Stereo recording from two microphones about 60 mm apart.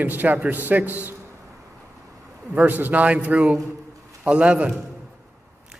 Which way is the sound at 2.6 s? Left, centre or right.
Right.